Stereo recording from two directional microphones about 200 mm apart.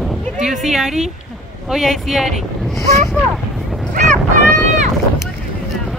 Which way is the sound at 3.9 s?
40° right (ahead or behind).